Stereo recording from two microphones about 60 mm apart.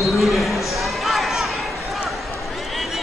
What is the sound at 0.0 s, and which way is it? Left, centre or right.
Basketball bounce, centre.